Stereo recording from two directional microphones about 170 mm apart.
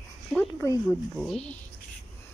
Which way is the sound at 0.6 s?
20° left (ahead or behind).